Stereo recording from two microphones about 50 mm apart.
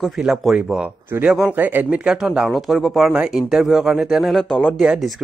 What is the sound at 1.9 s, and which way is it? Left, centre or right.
Speech, right.